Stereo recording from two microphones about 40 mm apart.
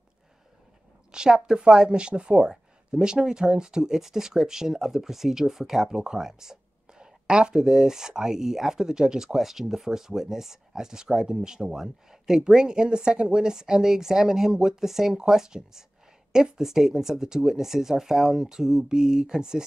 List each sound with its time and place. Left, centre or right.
1.1 s speech: centre